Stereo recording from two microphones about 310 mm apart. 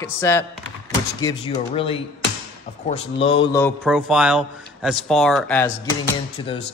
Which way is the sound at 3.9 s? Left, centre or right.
Centre.